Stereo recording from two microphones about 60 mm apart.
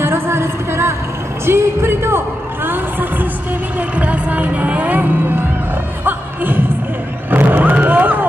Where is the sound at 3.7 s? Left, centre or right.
Right.